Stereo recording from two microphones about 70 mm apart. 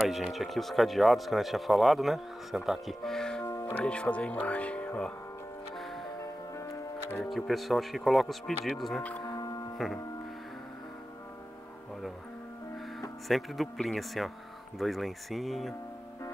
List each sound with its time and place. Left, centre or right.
0.1 s speech: centre
3.0 s speech: centre
3.4 s music: left
3.8 s speech: centre
7.2 s speech: centre
9.4 s music: left
13.3 s speech: centre